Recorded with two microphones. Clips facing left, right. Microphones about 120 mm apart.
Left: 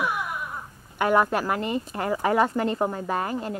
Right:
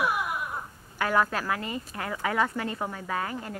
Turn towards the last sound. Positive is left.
turn(degrees=25)  # may be behind; listen again after turning